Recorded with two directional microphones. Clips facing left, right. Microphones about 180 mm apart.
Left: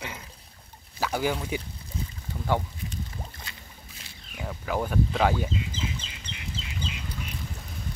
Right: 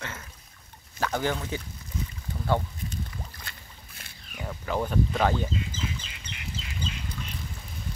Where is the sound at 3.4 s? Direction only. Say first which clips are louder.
Left 1 dB; 55° right (ahead or behind).